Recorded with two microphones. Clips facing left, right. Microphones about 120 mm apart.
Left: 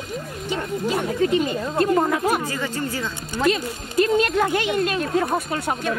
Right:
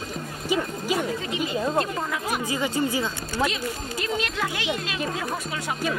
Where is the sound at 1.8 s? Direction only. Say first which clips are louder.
Left 8 dB; 50° left (ahead or behind).